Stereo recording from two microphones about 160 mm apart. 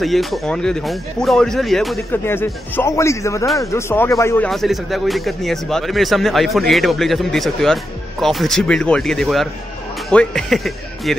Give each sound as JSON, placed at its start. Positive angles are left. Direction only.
{"t": 0.0, "sound": "speech", "side_deg": 0}
{"t": 2.2, "sound": "a man's voice", "side_deg": 15}
{"t": 4.5, "sound": "speech", "side_deg": 0}